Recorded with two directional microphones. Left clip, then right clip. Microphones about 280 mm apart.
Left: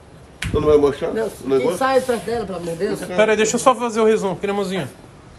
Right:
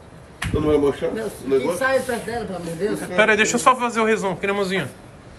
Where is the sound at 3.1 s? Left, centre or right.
Centre.